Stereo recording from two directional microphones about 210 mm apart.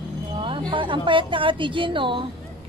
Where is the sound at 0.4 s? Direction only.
25° right (ahead or behind).